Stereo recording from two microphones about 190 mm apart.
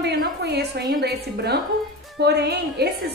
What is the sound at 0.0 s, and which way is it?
A woman's voice, 60° right (ahead or behind).